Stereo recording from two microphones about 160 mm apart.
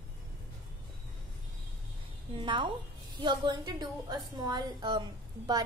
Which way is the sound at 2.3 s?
30° right (ahead or behind).